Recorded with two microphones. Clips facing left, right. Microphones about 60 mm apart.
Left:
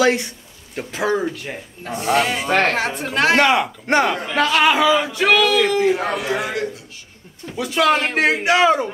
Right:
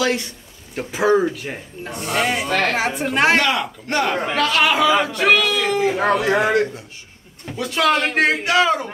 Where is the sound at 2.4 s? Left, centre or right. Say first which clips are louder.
Left 2 dB; left.